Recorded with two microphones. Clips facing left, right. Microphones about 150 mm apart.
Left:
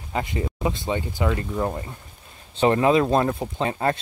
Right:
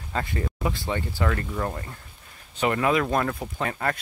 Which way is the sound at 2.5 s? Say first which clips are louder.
Left 5 dB; 30° left (ahead or behind).